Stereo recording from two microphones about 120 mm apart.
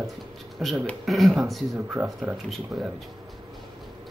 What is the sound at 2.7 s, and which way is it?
Speech, centre (ahead or behind).